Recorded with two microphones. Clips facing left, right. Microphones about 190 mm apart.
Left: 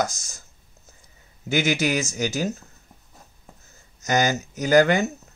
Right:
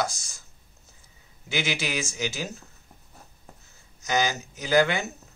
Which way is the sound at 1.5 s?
45° left (ahead or behind).